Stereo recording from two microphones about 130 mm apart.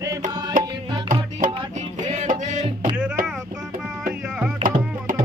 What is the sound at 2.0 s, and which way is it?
Music, 65° right (ahead or behind).